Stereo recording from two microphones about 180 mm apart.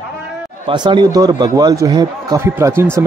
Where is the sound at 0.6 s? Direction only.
25° right (ahead or behind).